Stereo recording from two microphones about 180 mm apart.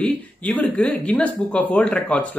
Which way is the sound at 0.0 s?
5° left (ahead or behind).